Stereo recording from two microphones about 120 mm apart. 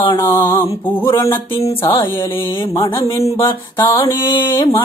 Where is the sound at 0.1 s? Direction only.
20° left (ahead or behind).